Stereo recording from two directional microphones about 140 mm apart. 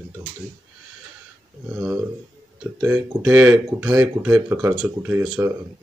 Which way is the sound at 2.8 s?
15° right (ahead or behind).